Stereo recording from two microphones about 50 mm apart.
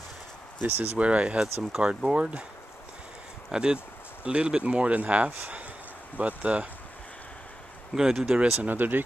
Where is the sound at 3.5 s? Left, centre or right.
Centre.